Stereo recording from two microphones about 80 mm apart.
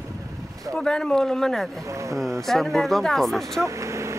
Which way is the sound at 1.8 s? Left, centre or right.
Right.